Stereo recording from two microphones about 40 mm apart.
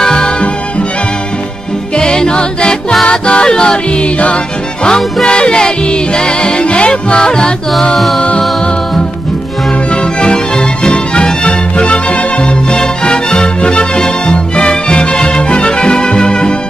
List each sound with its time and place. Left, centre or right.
0.0 s music: centre
2.0 s music: left
10.2 s music: left